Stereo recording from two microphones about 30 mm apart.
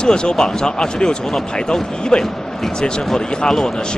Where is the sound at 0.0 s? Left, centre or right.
Left.